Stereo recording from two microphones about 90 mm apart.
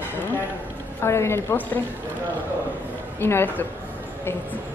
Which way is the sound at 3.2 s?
25° left (ahead or behind).